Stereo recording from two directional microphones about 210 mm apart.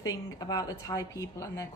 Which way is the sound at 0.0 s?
15° left (ahead or behind).